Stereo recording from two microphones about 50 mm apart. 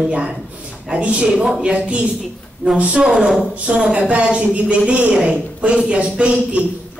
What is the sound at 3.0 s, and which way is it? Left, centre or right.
A man's voice, centre.